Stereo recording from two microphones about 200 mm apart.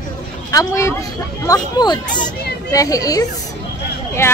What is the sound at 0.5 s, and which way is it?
A woman's voice, 15° left (ahead or behind).